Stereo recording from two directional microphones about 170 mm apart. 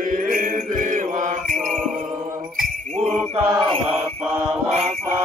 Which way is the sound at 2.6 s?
40° right (ahead or behind).